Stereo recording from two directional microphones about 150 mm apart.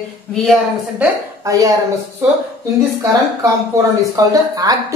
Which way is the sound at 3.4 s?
20° right (ahead or behind).